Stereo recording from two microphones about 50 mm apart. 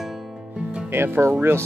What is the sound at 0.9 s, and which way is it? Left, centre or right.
Speech, right.